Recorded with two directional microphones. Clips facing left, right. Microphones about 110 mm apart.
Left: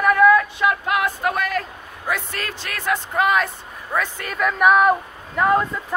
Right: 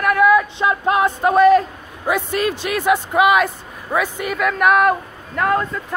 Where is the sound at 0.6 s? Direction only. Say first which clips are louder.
Right 3 dB; 30° right (ahead or behind).